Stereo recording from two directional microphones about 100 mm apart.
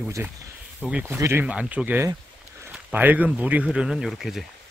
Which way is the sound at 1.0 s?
25° right (ahead or behind).